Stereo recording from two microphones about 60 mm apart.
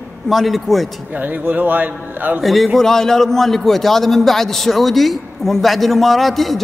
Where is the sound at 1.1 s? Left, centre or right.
Right.